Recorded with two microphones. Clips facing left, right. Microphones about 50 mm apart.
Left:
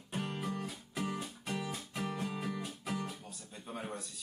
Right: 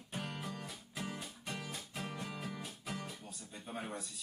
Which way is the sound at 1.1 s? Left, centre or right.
Centre.